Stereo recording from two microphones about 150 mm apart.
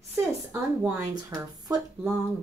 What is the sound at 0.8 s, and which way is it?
Speech, 25° right (ahead or behind).